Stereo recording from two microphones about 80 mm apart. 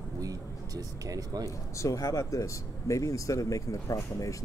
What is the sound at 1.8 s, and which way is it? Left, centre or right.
Speech, left.